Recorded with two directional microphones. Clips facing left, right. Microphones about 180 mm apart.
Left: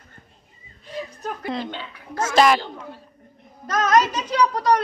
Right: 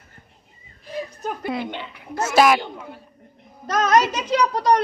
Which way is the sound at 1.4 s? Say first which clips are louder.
Right 1 dB; 5° right (ahead or behind).